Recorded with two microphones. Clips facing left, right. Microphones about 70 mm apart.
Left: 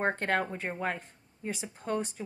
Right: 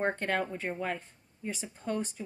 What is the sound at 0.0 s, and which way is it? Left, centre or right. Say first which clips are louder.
Speech: left 1 dB; left.